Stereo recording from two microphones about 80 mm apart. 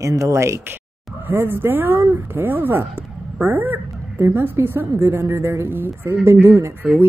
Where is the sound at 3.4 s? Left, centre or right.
Right.